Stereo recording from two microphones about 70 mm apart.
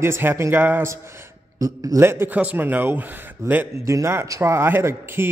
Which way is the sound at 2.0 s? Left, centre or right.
Right.